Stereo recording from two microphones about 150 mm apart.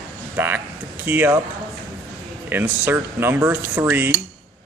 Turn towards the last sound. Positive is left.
turn(degrees=-15)  # may be behind; listen again after turning